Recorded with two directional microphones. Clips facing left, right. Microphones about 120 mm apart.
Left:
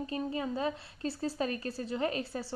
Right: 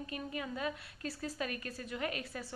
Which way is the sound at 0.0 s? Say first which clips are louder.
Left 7 dB; 30° left (ahead or behind).